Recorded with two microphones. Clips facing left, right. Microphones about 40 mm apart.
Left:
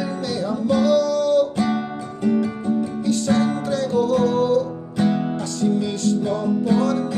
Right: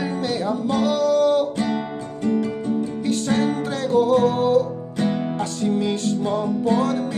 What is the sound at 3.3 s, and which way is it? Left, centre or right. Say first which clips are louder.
Music: left 2 dB; right.